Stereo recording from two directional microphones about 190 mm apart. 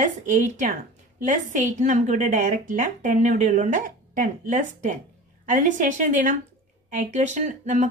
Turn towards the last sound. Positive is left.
turn(degrees=-40)  # may be behind; listen again after turning